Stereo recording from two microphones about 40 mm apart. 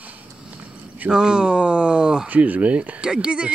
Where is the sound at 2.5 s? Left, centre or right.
Right.